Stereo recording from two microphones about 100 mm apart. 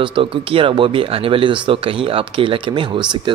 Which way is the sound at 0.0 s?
60° right (ahead or behind).